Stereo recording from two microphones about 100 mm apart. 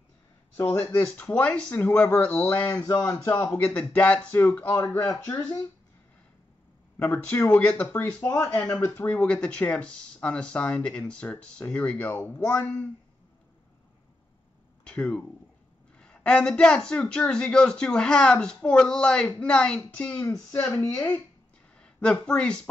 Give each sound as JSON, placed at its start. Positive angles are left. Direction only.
{"t": 0.6, "sound": "speech", "side_deg": 30}
{"t": 1.9, "sound": "speech", "side_deg": 20}
{"t": 7.0, "sound": "speech", "side_deg": 20}
{"t": 8.6, "sound": "speech", "side_deg": 30}
{"t": 9.2, "sound": "speech", "side_deg": 10}
{"t": 14.9, "sound": "speech", "side_deg": 10}
{"t": 20.8, "sound": "speech", "side_deg": 35}
{"t": 21.7, "sound": "speech", "side_deg": 10}